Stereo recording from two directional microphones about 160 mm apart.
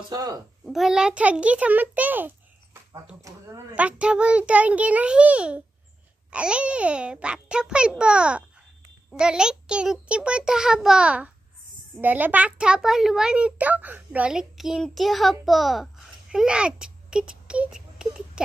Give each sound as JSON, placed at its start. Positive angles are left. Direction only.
{"t": 0.1, "sound": "a child's voice", "side_deg": -20}
{"t": 0.7, "sound": "a child's voice", "side_deg": 0}